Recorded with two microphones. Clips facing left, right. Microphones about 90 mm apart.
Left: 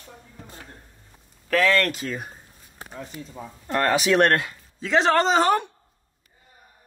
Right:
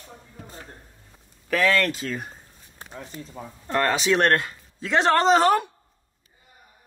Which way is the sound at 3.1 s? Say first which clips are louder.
Even; 30° right (ahead or behind).